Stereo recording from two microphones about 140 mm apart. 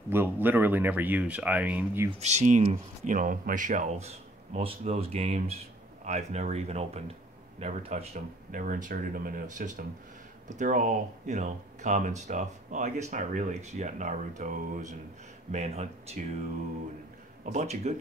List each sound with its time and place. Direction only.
0.1 s speech: 15° right (ahead or behind)
2.1 s speech: 55° right (ahead or behind)
8.5 s speech: 70° right (ahead or behind)
15.5 s speech: 50° right (ahead or behind)
17.5 s speech: 55° right (ahead or behind)